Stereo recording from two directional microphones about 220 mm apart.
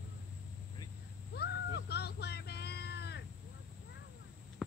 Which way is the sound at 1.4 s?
50° left (ahead or behind).